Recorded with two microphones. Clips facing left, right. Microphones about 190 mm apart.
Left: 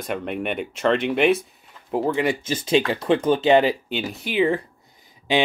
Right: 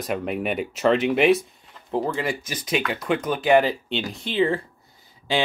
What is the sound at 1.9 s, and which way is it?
Speech, 15° left (ahead or behind).